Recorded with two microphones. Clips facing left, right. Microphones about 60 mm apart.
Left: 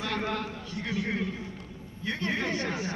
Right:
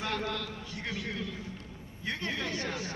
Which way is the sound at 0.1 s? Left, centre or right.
Left.